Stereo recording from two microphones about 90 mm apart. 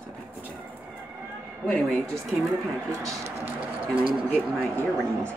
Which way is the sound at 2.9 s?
35° right (ahead or behind).